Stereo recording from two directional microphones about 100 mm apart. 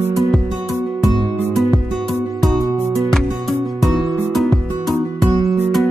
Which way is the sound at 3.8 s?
Centre (ahead or behind).